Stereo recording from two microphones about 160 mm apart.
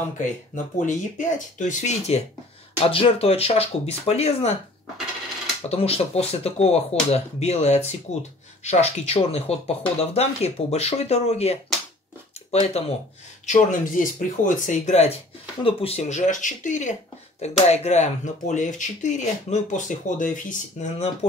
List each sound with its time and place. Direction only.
0.7 s speech: 50° left (ahead or behind)
5.7 s speech: 40° left (ahead or behind)
13.5 s speech: 55° left (ahead or behind)